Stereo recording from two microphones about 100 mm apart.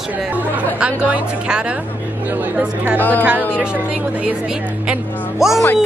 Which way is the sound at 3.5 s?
10° right (ahead or behind).